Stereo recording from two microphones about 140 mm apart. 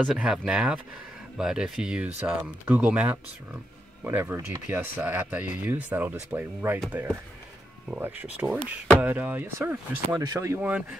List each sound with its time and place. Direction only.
0.0 s speech: 5° right (ahead or behind)
8.5 s speech: 5° left (ahead or behind)
9.0 s speech: 10° right (ahead or behind)